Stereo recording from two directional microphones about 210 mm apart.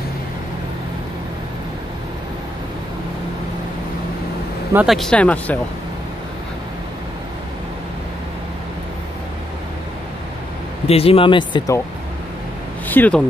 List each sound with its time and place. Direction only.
4.7 s speech: centre (ahead or behind)
10.9 s speech: 25° left (ahead or behind)
12.8 s speech: 10° left (ahead or behind)